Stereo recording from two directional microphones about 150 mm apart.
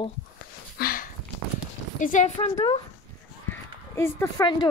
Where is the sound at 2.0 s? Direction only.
55° left (ahead or behind).